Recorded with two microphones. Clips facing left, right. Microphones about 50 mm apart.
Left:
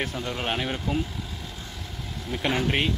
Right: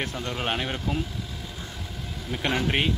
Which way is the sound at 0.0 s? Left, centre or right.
Centre.